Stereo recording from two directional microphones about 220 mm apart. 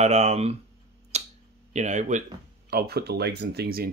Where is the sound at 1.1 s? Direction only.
30° right (ahead or behind).